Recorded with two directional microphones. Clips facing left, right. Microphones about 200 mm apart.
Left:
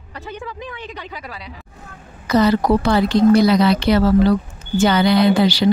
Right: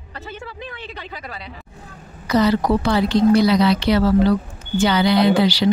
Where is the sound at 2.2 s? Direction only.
50° left (ahead or behind).